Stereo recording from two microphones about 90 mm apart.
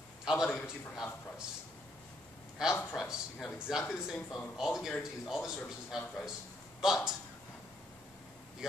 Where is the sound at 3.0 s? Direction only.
5° right (ahead or behind).